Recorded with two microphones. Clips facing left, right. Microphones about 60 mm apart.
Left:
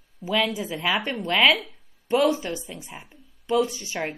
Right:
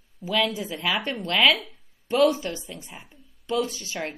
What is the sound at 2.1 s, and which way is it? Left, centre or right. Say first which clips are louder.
A woman's voice: even; centre.